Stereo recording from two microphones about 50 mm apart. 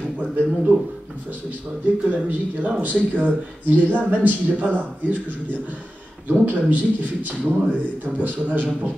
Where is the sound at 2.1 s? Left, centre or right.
Right.